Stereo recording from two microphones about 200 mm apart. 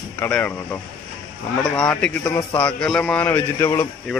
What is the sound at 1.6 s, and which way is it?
Speech, 5° left (ahead or behind).